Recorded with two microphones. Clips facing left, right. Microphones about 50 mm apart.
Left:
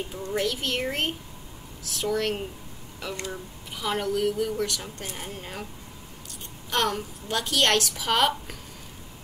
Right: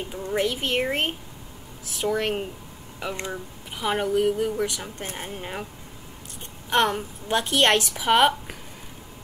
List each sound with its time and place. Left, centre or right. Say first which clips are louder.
0.1 s speech: right 4 dB; right
6.7 s speech: right 4 dB; right